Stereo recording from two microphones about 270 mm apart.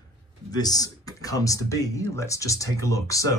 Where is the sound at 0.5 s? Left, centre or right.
Centre.